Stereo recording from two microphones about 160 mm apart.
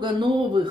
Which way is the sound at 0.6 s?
30° right (ahead or behind).